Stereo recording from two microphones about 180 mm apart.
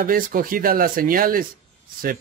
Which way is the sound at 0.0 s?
50° right (ahead or behind).